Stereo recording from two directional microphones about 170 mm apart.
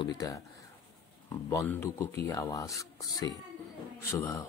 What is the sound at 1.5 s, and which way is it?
Speech, 15° left (ahead or behind).